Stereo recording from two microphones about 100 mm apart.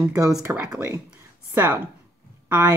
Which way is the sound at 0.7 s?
25° right (ahead or behind).